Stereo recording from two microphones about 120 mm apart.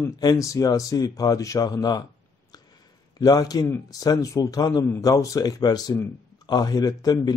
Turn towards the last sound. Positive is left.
turn(degrees=35)  # may be behind; listen again after turning